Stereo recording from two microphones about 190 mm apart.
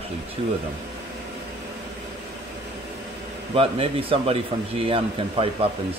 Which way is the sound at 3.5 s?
30° right (ahead or behind).